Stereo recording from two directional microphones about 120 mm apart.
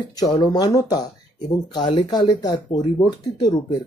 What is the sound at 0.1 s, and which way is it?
Speech, 35° left (ahead or behind).